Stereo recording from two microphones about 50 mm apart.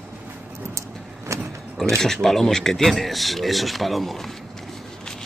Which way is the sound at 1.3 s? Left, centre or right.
Right.